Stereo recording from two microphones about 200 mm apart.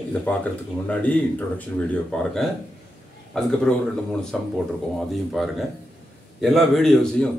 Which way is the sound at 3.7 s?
5° left (ahead or behind).